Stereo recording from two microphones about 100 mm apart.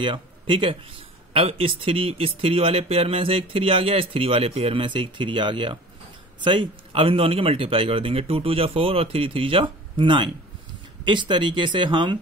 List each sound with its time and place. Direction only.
0.0 s speech: 60° right (ahead or behind)